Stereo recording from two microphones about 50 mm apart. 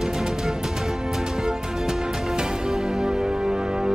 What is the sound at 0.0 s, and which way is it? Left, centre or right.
Music, centre.